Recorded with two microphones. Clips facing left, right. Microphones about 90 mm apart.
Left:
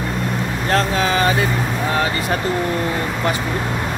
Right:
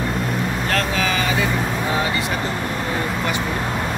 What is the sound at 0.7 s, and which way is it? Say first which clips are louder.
Vehicle: left 6 dB; 30° left (ahead or behind).